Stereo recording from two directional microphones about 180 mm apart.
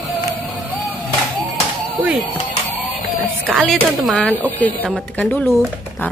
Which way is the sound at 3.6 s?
Centre (ahead or behind).